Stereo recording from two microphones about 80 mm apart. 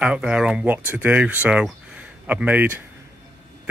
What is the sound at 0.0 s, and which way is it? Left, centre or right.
Speech, centre.